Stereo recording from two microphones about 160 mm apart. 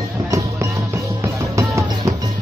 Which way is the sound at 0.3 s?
20° right (ahead or behind).